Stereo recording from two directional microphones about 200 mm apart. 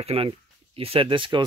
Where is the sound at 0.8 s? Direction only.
25° right (ahead or behind).